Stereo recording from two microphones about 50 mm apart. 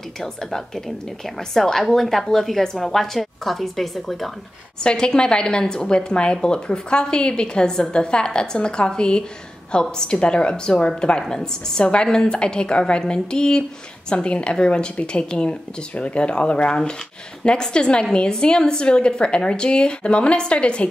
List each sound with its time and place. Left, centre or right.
0.2 s a woman's voice: centre
4.8 s a woman's voice: centre